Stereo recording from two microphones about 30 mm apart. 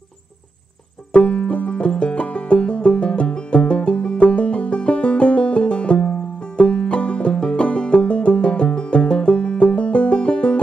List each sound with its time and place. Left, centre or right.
1.1 s banjo: left
7.5 s music: left